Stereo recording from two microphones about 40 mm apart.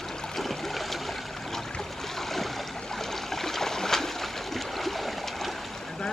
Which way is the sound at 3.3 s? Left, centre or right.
Centre.